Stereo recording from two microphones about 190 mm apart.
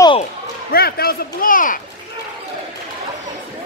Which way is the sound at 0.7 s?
55° left (ahead or behind).